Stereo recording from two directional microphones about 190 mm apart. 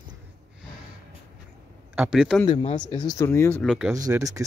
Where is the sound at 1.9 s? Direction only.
5° right (ahead or behind).